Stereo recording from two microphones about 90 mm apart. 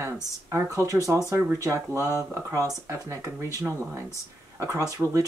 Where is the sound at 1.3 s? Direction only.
25° right (ahead or behind).